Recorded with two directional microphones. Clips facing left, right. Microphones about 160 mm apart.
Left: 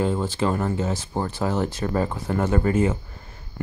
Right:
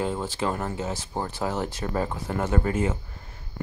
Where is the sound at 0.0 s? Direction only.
5° right (ahead or behind).